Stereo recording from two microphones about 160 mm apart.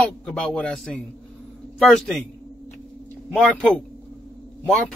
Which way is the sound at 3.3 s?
5° left (ahead or behind).